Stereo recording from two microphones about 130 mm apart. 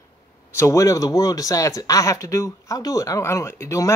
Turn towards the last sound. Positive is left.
turn(degrees=25)  # may be behind; listen again after turning